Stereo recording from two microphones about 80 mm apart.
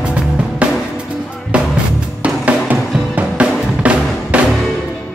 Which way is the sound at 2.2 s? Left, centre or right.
Centre.